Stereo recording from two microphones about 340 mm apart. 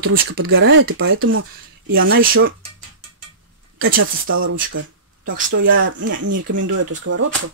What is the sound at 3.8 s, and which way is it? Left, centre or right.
Speech, right.